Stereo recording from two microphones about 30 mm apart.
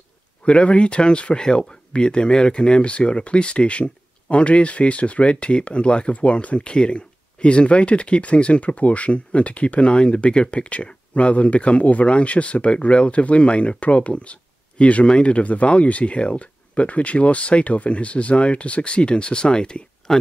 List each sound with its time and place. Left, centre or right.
0.5 s speech: left
1.4 s speech: left
6.1 s speech: left
12.2 s speech: left
20.1 s speech: left